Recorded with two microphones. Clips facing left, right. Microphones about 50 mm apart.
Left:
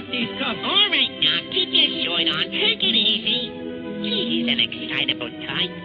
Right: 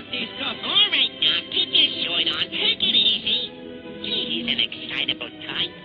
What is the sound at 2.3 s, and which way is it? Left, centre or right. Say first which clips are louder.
Speech: left 3 dB; centre.